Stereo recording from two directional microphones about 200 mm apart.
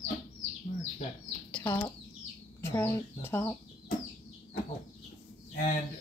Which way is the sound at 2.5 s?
10° left (ahead or behind).